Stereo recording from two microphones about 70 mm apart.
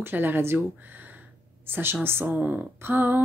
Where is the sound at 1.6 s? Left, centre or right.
Right.